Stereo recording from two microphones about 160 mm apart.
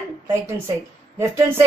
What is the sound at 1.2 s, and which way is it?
Speech, 15° right (ahead or behind).